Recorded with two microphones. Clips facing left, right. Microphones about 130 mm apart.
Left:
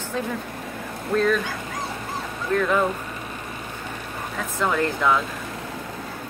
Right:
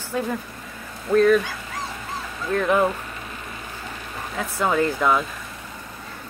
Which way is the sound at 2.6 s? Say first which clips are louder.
Right 3 dB; 15° right (ahead or behind).